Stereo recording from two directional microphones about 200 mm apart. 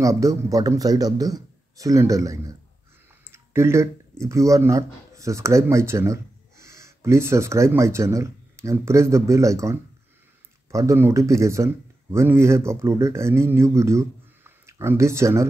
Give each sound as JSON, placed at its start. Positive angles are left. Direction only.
{"t": 0.0, "sound": "speech", "side_deg": -15}